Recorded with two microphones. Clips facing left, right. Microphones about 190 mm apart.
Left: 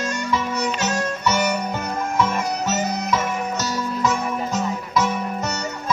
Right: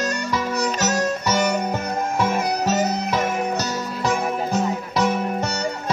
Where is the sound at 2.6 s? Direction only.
35° right (ahead or behind).